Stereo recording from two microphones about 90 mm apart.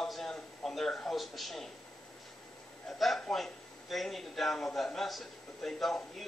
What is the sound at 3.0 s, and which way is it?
A man's voice, 5° left (ahead or behind).